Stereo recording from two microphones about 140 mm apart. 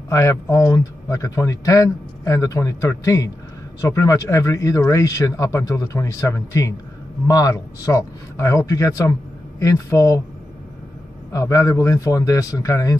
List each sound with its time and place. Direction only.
0.1 s a man's voice: 20° left (ahead or behind)
11.3 s a man's voice: 25° left (ahead or behind)